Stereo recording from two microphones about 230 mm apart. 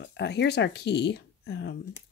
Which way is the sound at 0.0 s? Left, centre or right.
Left.